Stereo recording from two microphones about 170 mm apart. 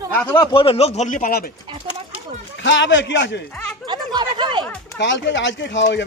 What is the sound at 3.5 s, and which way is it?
Speech, 5° left (ahead or behind).